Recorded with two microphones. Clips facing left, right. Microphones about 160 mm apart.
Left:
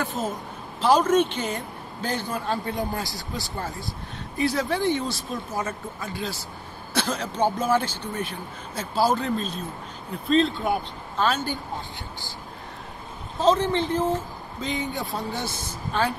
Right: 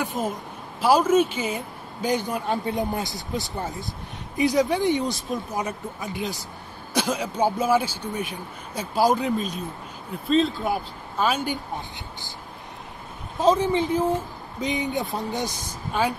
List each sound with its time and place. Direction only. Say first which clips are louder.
0.0 s a sound: right 1 dB; 10° right (ahead or behind)
0.7 s a man's voice: right 1 dB; 10° right (ahead or behind)
10.2 s speech: even; centre (ahead or behind)
13.4 s a man's voice: right 1 dB; 10° right (ahead or behind)